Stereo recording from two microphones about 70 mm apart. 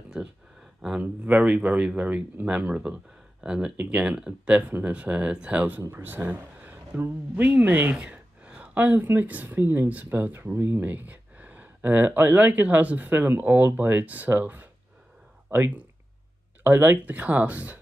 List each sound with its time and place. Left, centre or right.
0.2 s a sound: centre
1.0 s speech: right
5.8 s speech: right
16.6 s speech: right